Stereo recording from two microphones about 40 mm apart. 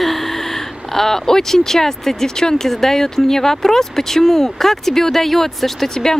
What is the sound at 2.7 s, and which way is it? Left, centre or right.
Speech, centre.